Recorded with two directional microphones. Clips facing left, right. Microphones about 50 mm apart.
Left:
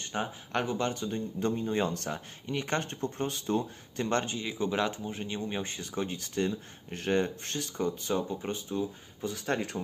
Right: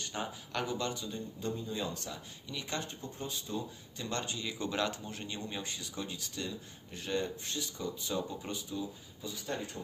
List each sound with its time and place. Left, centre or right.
0.0 s speech: left
9.3 s speech: left